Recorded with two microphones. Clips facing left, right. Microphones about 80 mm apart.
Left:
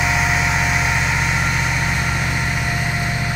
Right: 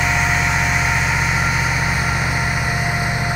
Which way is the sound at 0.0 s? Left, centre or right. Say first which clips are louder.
Even; centre.